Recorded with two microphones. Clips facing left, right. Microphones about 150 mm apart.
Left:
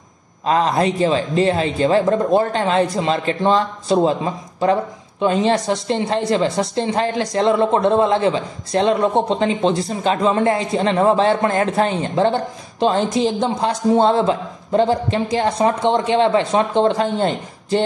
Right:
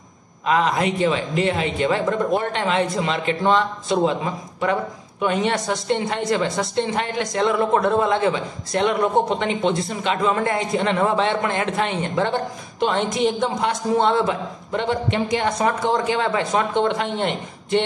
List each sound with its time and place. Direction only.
0.5 s speech: 35° left (ahead or behind)